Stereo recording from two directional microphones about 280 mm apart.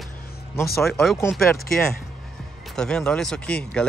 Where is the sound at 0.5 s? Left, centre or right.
Centre.